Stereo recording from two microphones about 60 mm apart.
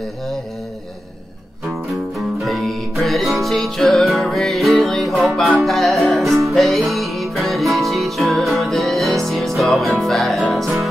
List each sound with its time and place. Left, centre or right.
2.1 s music: centre